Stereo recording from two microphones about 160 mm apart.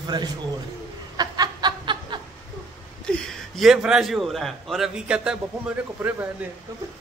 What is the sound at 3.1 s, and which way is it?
A man's voice, 5° left (ahead or behind).